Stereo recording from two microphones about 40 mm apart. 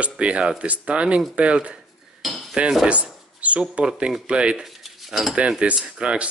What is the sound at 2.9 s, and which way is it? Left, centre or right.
Speech, right.